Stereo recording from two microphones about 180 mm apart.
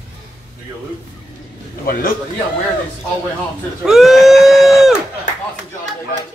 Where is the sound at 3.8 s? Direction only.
Centre (ahead or behind).